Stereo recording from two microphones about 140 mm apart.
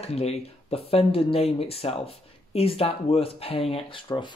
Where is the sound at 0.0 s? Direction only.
50° left (ahead or behind).